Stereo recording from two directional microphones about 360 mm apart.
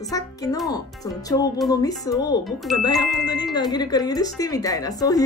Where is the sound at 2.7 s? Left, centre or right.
Centre.